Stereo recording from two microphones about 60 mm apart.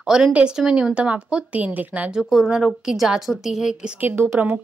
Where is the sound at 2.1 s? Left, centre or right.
Centre.